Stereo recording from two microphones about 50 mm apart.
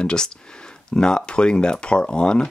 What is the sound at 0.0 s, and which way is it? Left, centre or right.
Speech, centre.